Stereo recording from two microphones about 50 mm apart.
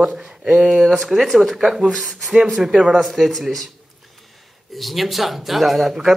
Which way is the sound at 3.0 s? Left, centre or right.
Centre.